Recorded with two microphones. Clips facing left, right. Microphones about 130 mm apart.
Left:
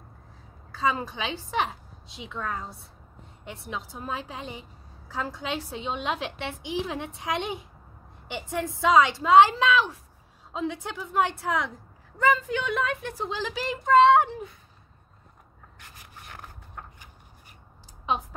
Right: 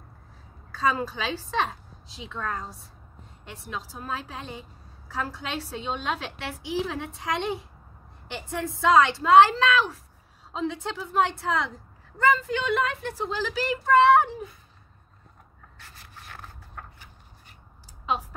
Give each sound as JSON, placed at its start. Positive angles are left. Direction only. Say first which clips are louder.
{"t": 0.7, "sound": "a woman's voice", "louder": "right 1 dB", "side_deg": 20}
{"t": 15.8, "sound": "rub", "louder": "even", "side_deg": 15}